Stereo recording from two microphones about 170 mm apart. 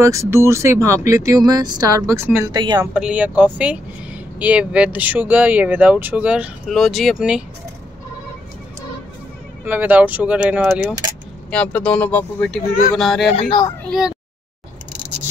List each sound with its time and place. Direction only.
0.0 s speech: 15° right (ahead or behind)
2.5 s speech: 25° right (ahead or behind)
2.9 s speech: 5° right (ahead or behind)
9.7 s speech: 10° right (ahead or behind)
11.5 s speech: 10° left (ahead or behind)
13.3 s speech: 35° left (ahead or behind)
13.8 s speech: centre (ahead or behind)